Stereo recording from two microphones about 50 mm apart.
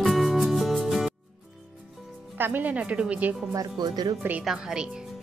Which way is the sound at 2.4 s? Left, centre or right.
Right.